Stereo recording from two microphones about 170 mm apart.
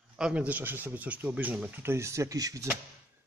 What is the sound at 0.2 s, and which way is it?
Speech, 5° right (ahead or behind).